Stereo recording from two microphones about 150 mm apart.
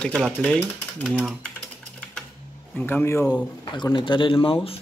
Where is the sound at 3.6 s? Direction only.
30° left (ahead or behind).